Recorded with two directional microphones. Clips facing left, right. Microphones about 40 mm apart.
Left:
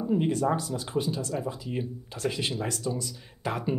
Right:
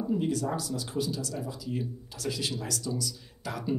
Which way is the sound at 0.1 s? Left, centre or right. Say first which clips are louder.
Left 5 dB; left.